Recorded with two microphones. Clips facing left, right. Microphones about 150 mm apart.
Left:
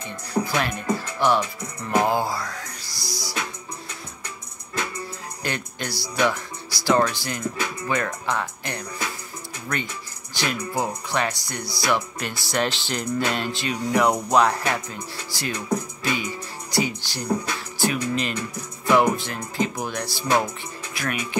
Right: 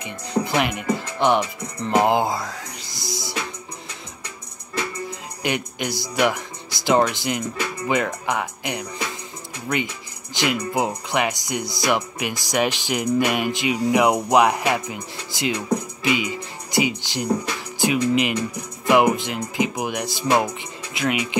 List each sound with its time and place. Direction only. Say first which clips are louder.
0.0 s speech: right 2 dB; 20° right (ahead or behind)
5.4 s speech: right 5 dB; 15° right (ahead or behind)
10.3 s speech: right 4 dB; 15° right (ahead or behind)